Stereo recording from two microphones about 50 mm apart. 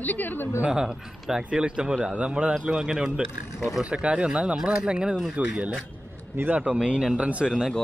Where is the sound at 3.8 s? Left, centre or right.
Right.